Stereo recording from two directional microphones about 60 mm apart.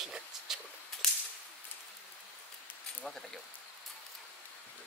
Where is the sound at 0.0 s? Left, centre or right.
Centre.